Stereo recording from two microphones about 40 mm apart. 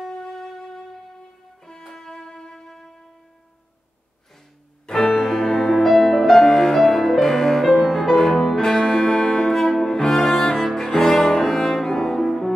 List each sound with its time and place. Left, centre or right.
0.1 s music: centre
4.8 s music: centre
5.9 s music: centre
9.6 s cello: centre